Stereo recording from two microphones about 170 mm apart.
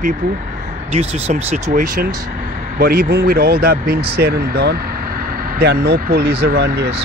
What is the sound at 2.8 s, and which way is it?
Speech, 60° right (ahead or behind).